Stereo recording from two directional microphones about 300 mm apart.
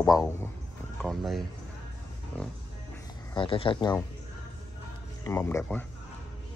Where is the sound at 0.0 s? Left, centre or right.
Centre.